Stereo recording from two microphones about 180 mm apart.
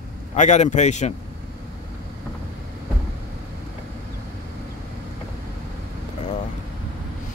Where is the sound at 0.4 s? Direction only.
40° left (ahead or behind).